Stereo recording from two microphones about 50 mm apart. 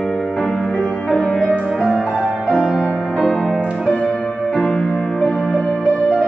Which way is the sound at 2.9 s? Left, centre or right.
Centre.